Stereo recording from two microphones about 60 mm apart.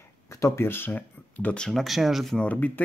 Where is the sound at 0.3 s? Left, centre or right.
Left.